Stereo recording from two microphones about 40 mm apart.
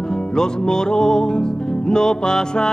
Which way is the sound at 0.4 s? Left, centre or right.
Centre.